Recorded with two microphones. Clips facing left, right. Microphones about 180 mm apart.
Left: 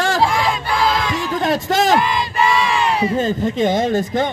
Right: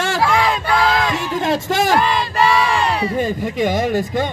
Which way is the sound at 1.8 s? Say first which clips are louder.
Even; 20° left (ahead or behind).